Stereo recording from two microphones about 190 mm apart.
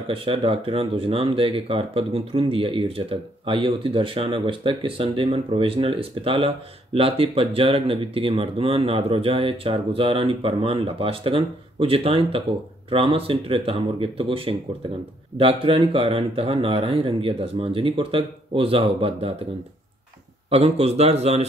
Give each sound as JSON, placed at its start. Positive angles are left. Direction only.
{"t": 0.1, "sound": "speech", "side_deg": -30}
{"t": 20.4, "sound": "speech", "side_deg": -30}